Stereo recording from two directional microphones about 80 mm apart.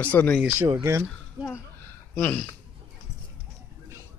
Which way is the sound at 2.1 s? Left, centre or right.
Left.